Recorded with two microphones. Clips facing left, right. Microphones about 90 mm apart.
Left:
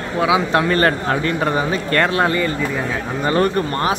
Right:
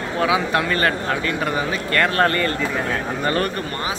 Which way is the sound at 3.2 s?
25° left (ahead or behind).